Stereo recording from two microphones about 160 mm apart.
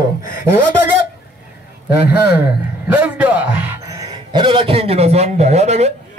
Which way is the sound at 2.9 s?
10° right (ahead or behind).